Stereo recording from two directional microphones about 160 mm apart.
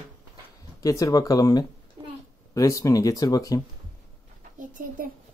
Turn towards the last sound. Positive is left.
turn(degrees=-55)  # may be behind; listen again after turning